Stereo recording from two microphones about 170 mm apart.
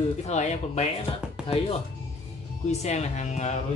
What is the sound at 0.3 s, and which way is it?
Speech, 40° left (ahead or behind).